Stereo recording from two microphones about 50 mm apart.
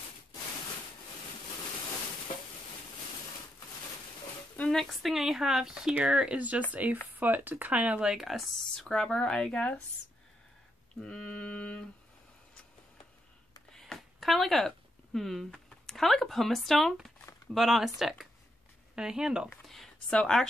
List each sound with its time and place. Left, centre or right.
4.6 s speech: centre
5.1 s speech: centre
6.7 s speech: right
8.0 s speech: centre
8.7 s speech: centre
11.0 s a woman's voice: centre
13.7 s a sound: centre
15.1 s speech: centre
19.6 s a sound: centre
20.1 s a woman's voice: centre